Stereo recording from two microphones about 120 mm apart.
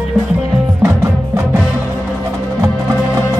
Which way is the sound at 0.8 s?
25° right (ahead or behind).